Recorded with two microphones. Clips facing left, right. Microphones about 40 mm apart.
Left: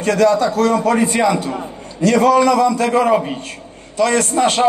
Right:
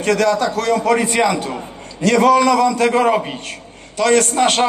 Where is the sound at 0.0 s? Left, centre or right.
Right.